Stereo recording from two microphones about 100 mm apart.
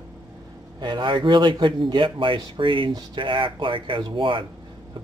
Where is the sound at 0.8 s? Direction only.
50° right (ahead or behind).